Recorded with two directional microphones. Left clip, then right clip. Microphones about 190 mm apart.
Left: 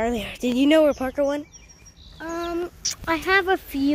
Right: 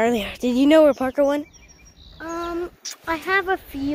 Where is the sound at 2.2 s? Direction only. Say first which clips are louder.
Even; 20° left (ahead or behind).